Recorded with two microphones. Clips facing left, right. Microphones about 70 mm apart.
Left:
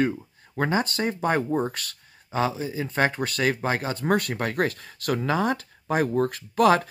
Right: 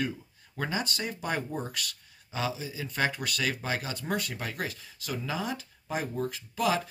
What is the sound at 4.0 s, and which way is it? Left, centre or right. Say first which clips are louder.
Speech: left 9 dB; left.